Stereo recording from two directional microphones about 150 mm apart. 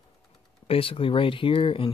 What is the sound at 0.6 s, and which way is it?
Speech, 35° left (ahead or behind).